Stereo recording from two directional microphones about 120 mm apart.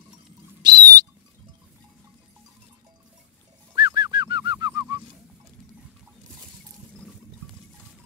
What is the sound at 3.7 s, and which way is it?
Bird, 35° right (ahead or behind).